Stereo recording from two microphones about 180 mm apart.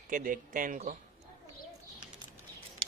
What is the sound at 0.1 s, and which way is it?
Speech, 50° right (ahead or behind).